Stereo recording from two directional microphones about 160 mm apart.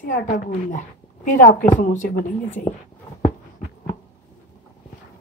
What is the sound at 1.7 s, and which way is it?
Speech, 55° left (ahead or behind).